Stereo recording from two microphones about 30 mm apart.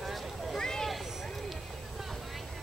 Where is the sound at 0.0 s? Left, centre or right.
Centre.